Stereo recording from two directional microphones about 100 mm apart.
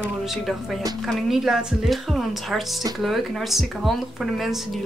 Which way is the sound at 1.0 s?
Centre (ahead or behind).